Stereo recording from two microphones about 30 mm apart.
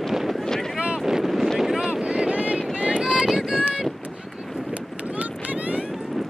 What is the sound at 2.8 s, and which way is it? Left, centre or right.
Run, right.